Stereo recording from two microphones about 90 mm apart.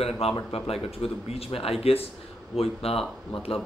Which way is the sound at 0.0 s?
90° left.